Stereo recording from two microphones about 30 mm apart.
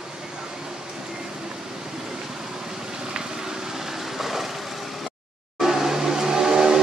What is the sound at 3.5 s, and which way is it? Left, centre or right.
Vehicle, centre.